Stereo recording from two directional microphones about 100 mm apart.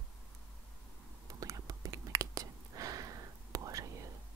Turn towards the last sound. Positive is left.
turn(degrees=-35)  # may be behind; listen again after turning